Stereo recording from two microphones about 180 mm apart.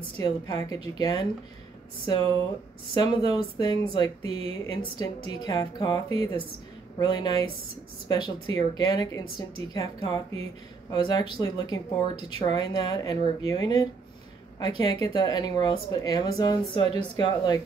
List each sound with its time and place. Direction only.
0.2 s speech: 20° left (ahead or behind)